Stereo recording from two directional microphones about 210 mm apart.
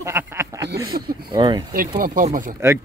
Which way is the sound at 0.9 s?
40° right (ahead or behind).